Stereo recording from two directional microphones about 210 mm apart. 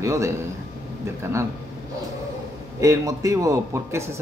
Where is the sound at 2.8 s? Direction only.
15° right (ahead or behind).